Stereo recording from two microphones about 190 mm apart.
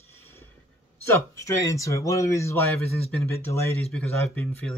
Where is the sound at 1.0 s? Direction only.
15° left (ahead or behind).